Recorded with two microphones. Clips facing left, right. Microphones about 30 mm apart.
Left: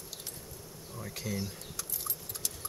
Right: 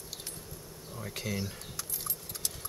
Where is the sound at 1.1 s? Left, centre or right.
Right.